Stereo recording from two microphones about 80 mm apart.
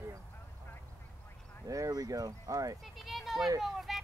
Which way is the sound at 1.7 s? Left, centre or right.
Right.